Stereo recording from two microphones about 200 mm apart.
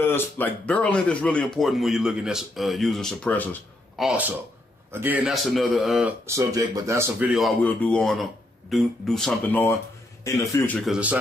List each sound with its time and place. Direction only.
0.0 s speech: 10° left (ahead or behind)
4.0 s a man's voice: 5° right (ahead or behind); by 10.8 s 15° left (ahead or behind)
10.9 s speech: 5° right (ahead or behind)